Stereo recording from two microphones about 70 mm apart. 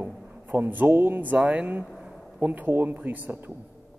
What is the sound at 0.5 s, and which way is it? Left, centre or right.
Speech, right.